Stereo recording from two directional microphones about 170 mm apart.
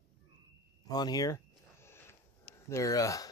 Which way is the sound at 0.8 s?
25° left (ahead or behind).